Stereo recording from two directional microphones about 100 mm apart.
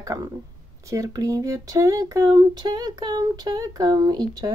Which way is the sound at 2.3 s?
45° right (ahead or behind).